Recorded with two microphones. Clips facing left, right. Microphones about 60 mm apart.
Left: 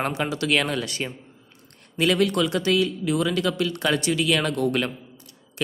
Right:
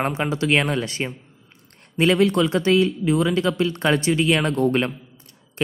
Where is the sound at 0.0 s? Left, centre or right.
Right.